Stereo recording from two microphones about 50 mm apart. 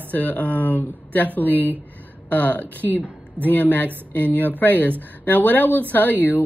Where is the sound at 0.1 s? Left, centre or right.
Left.